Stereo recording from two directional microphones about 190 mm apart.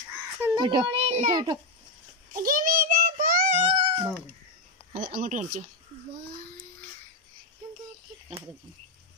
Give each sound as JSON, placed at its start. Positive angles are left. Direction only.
{"t": 0.6, "sound": "a child's voice", "side_deg": -25}
{"t": 2.3, "sound": "child singing", "side_deg": -45}
{"t": 4.9, "sound": "speech", "side_deg": -50}